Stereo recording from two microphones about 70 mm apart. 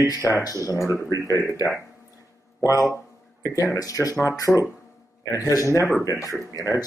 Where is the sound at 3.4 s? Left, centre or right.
Left.